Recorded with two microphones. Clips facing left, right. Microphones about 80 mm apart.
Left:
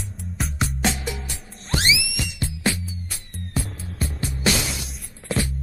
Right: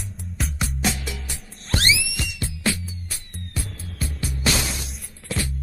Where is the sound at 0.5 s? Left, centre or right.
Left.